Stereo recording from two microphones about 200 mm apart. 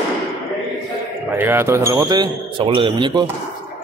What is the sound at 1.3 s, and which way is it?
Speech, 10° right (ahead or behind).